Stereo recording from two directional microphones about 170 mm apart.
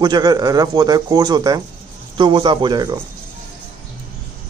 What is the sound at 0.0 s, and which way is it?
A man's voice, 25° right (ahead or behind).